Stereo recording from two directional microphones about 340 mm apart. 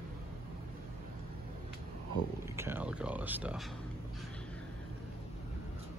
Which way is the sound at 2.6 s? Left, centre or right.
Centre.